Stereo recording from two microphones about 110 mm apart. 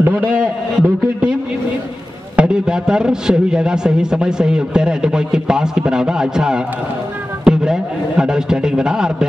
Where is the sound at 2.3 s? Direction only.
5° right (ahead or behind).